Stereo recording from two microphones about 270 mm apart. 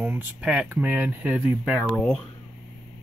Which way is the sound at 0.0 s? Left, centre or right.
Centre.